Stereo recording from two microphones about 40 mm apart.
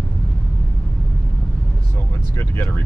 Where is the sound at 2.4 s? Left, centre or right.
Left.